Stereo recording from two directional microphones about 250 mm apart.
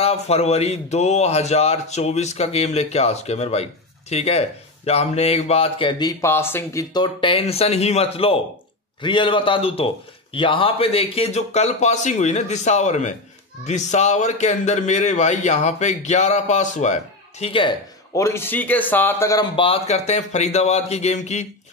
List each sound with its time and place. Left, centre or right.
0.0 s a man's voice: left